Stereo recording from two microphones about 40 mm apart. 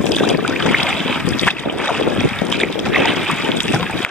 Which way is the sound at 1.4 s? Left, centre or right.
Left.